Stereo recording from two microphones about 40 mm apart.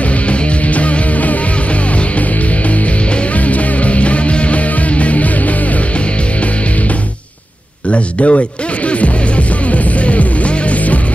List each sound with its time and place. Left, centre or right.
0.3 s music: left
3.3 s music: left
7.9 s music: left